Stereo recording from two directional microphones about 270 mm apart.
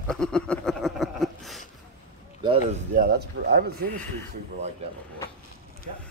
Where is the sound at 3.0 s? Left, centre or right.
Right.